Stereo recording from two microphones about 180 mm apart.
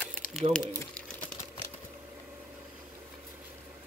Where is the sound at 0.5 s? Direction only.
5° left (ahead or behind).